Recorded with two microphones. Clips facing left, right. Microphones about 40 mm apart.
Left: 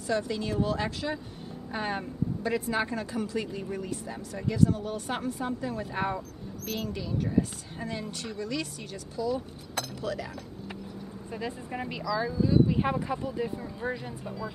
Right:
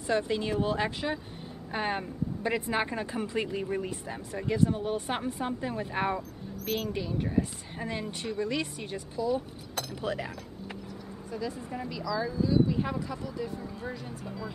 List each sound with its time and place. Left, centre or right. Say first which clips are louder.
0.0 s speech: right 1 dB; right
11.3 s speech: even; left
12.4 s speech: left 3 dB; left